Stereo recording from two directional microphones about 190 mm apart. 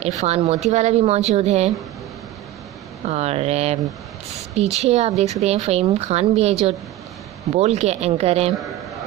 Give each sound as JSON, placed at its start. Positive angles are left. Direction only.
{"t": 0.0, "sound": "speech", "side_deg": -35}
{"t": 3.1, "sound": "speech", "side_deg": -35}